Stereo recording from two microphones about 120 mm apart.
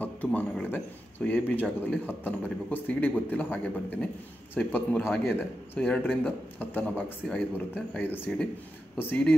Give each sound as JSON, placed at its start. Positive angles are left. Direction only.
{"t": 0.0, "sound": "speech", "side_deg": 15}